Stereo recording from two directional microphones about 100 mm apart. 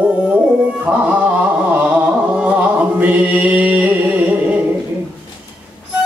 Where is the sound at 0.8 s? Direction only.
15° right (ahead or behind).